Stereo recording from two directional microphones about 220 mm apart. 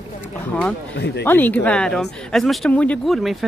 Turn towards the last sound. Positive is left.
turn(degrees=0)  # may be behind; listen again after turning